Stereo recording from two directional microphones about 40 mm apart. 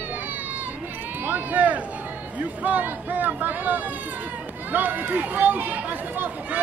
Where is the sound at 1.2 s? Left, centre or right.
Right.